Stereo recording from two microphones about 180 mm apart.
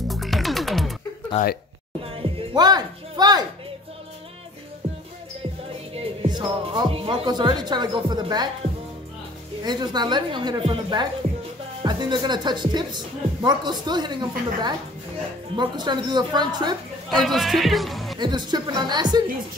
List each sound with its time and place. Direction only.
0.1 s music: centre (ahead or behind)
1.4 s speech: 40° left (ahead or behind)
2.0 s music: 30° right (ahead or behind)
4.8 s music: 30° right (ahead or behind)
5.9 s speech: 25° right (ahead or behind)
9.6 s speech: 25° right (ahead or behind)
17.1 s speech: centre (ahead or behind)
18.2 s speech: 25° right (ahead or behind)